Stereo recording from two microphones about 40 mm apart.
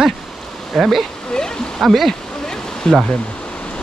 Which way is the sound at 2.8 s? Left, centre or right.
Centre.